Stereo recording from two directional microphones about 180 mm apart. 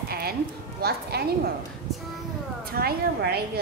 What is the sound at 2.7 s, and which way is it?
Speech, 60° right (ahead or behind).